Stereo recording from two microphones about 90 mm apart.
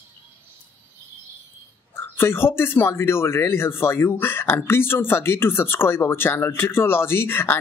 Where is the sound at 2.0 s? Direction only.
25° left (ahead or behind).